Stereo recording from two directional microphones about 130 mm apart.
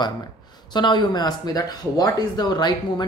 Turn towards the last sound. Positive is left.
turn(degrees=35)  # may be behind; listen again after turning